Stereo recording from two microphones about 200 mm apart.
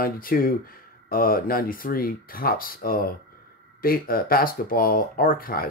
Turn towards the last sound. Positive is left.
turn(degrees=45)  # may be behind; listen again after turning